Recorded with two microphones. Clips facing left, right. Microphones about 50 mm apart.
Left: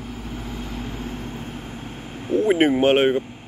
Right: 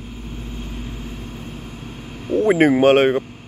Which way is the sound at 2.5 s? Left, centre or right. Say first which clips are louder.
Right 4 dB; right.